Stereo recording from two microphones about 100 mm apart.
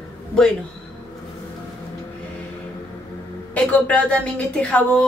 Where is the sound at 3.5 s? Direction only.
10° left (ahead or behind).